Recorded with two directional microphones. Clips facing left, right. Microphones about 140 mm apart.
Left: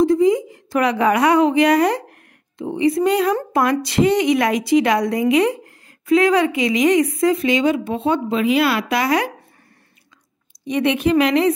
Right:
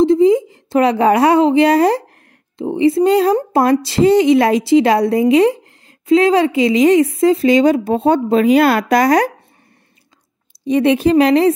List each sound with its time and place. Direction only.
0.0 s a woman's voice: 25° right (ahead or behind); by 9.3 s 40° right (ahead or behind)
10.6 s speech: 35° right (ahead or behind)